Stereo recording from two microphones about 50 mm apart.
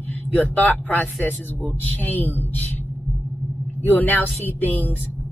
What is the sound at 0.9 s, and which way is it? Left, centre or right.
A man's voice, left.